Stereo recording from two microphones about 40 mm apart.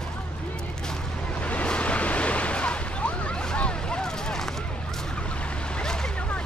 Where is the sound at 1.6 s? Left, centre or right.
Left.